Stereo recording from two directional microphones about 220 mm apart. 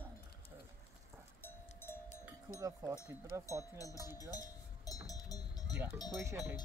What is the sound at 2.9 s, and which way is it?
Speech, 15° left (ahead or behind).